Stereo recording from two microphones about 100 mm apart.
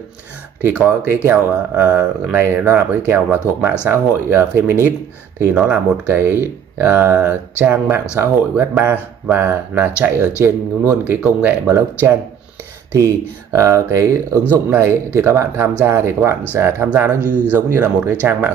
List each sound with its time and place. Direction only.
0.6 s speech: 20° right (ahead or behind)